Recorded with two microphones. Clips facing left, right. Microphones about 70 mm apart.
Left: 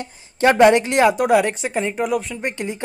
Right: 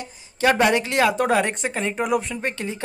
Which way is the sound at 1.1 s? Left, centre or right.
Centre.